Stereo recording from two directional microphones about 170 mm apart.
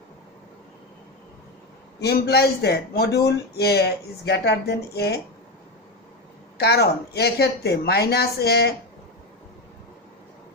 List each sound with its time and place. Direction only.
2.0 s speech: 70° left (ahead or behind)
6.6 s speech: 70° left (ahead or behind)